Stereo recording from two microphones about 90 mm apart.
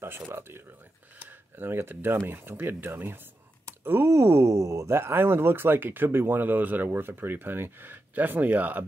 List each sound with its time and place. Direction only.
0.3 s speech: 25° right (ahead or behind)
1.2 s a sound: 25° right (ahead or behind)
2.2 s speech: 25° right (ahead or behind)